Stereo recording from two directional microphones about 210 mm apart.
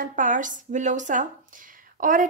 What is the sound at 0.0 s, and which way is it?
A woman's voice, 40° right (ahead or behind).